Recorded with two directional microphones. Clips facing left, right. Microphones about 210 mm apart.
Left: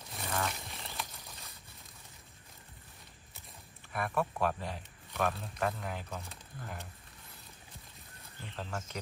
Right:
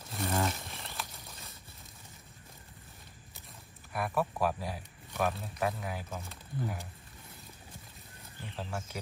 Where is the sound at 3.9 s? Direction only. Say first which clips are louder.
Right 1 dB; 5° right (ahead or behind).